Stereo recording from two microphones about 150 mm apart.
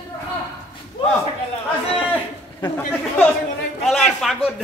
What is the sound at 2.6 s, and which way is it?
Speech, 30° left (ahead or behind).